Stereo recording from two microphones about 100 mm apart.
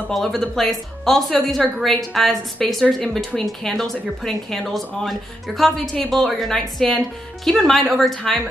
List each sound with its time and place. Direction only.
0.1 s speech: 5° left (ahead or behind)